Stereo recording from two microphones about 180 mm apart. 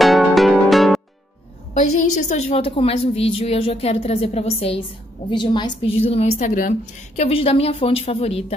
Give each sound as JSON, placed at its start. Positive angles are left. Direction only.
{"t": 0.0, "sound": "music", "side_deg": 0}
{"t": 1.7, "sound": "a woman's voice", "side_deg": 40}
{"t": 7.2, "sound": "a woman's voice", "side_deg": 35}